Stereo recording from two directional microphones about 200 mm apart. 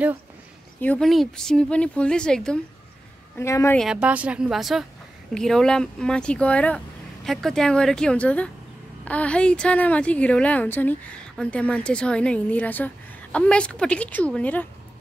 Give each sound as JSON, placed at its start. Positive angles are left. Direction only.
{"t": 0.7, "sound": "a woman's voice", "side_deg": 5}
{"t": 3.8, "sound": "a woman's voice", "side_deg": -5}